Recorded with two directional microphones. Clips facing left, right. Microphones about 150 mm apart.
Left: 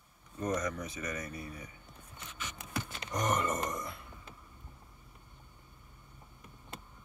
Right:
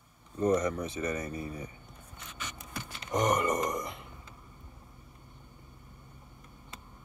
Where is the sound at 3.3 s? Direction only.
15° right (ahead or behind).